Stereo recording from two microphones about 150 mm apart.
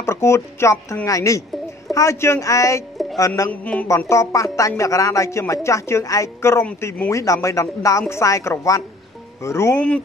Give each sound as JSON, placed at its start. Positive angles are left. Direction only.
{"t": 0.0, "sound": "a woman's voice", "side_deg": 20}
{"t": 3.6, "sound": "speech", "side_deg": 10}
{"t": 3.9, "sound": "a woman's voice", "side_deg": 20}